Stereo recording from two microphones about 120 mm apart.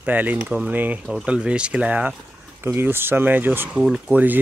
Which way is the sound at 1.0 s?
5° right (ahead or behind).